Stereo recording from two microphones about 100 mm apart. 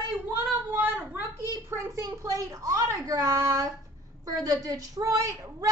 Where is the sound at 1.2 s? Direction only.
35° left (ahead or behind).